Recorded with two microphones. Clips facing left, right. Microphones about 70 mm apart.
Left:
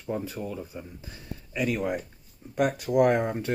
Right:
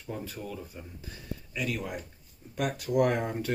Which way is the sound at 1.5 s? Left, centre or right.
Left.